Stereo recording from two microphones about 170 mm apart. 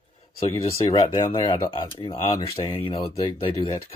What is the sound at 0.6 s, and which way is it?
Speech, 20° left (ahead or behind).